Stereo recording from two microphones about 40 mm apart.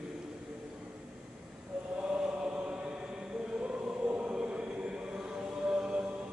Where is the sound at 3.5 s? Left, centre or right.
Right.